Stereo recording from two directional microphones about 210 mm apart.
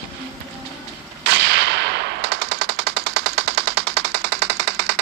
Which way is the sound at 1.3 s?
55° right (ahead or behind).